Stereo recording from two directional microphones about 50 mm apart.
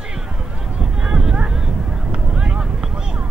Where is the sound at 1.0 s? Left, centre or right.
Centre.